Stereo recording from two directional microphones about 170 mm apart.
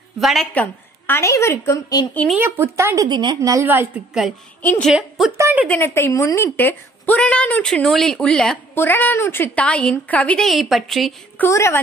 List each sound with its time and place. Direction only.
0.2 s a woman's voice: centre (ahead or behind); by 2.0 s 20° left (ahead or behind)
2.3 s a woman's voice: 15° right (ahead or behind)
3.1 s a woman's voice: 25° right (ahead or behind); by 4.3 s 5° right (ahead or behind)
4.6 s a woman's voice: 5° left (ahead or behind); by 5.7 s 10° right (ahead or behind)
5.7 s a woman's voice: 15° left (ahead or behind)
11.4 s a woman's voice: 15° left (ahead or behind)